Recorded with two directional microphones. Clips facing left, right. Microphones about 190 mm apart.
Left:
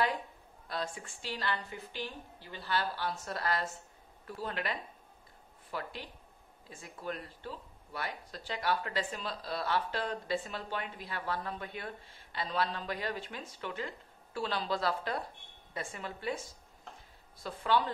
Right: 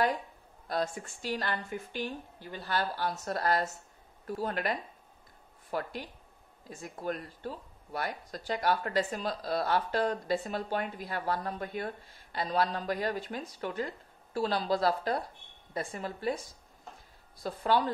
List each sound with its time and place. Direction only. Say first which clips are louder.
0.7 s speech: right 6 dB; 45° right (ahead or behind)